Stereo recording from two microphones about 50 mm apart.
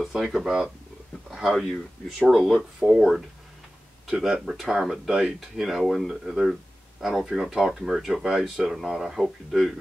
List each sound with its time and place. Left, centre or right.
0.1 s speech: centre
1.3 s a sound: centre
1.7 s speech: centre
2.5 s speech: centre